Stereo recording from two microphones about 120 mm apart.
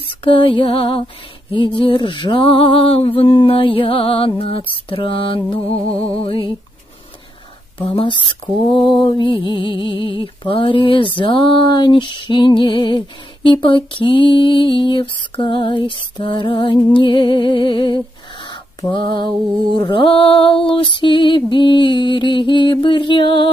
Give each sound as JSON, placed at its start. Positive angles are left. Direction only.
{"t": 0.2, "sound": "female singing", "side_deg": 45}
{"t": 7.8, "sound": "female singing", "side_deg": 45}
{"t": 18.5, "sound": "a sound", "side_deg": 40}
{"t": 19.7, "sound": "female singing", "side_deg": 40}
{"t": 21.5, "sound": "mantra", "side_deg": 40}